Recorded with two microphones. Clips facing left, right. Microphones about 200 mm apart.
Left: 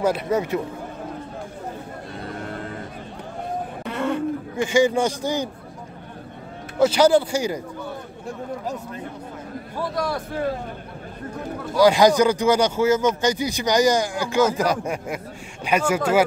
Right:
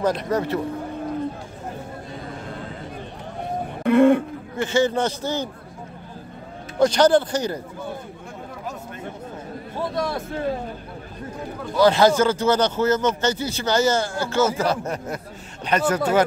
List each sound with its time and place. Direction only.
0.0 s speech: 10° left (ahead or behind)
3.8 s a sound: 55° right (ahead or behind)
4.6 s speech: 10° left (ahead or behind)
6.8 s speech: 5° left (ahead or behind)
9.8 s speech: 25° right (ahead or behind)
11.6 s speech: 10° left (ahead or behind)